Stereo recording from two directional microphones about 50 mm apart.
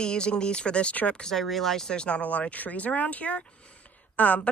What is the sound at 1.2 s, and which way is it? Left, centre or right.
A woman's voice, centre.